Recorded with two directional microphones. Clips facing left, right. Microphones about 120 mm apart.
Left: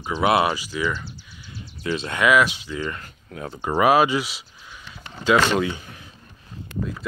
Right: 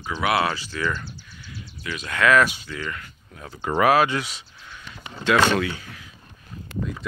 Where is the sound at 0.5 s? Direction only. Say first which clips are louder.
Left 2 dB; 10° left (ahead or behind).